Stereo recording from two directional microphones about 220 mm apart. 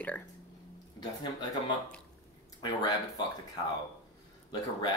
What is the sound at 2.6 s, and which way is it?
Speech, 20° left (ahead or behind).